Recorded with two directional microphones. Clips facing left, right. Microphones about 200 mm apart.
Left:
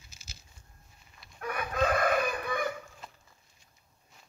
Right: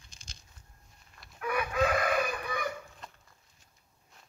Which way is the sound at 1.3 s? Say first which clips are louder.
Right 1 dB; 40° left (ahead or behind).